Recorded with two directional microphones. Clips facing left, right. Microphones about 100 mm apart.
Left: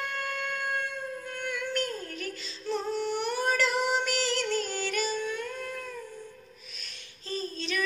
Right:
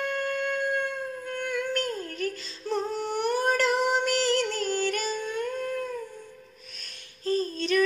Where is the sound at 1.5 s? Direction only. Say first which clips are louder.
Right 2 dB; 40° right (ahead or behind).